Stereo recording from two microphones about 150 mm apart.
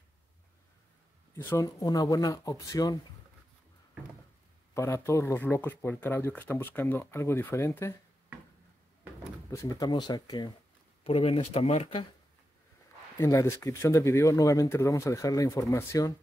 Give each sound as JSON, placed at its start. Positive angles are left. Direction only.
{"t": 1.3, "sound": "speech", "side_deg": 20}
{"t": 4.7, "sound": "speech", "side_deg": 20}
{"t": 9.5, "sound": "speech", "side_deg": 25}
{"t": 11.1, "sound": "speech", "side_deg": 40}
{"t": 13.2, "sound": "speech", "side_deg": 20}